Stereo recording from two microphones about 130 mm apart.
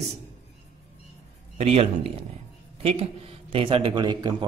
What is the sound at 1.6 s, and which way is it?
A man's voice, 55° right (ahead or behind).